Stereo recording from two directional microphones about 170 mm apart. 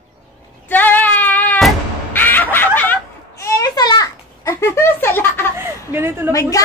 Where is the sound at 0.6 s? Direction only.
10° left (ahead or behind).